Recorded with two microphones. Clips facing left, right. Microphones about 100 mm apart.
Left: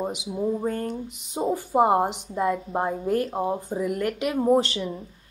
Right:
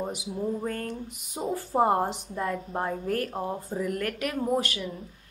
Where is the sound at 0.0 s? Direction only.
20° left (ahead or behind).